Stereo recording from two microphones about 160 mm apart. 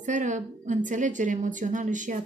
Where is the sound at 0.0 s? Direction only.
50° right (ahead or behind).